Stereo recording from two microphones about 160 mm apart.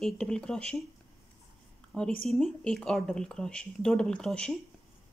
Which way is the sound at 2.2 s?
Centre (ahead or behind).